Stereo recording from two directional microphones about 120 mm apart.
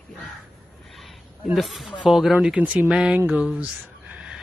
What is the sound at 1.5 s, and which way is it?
Speech, centre (ahead or behind).